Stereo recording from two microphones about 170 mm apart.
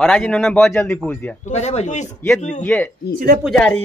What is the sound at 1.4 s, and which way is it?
Speech, 40° left (ahead or behind).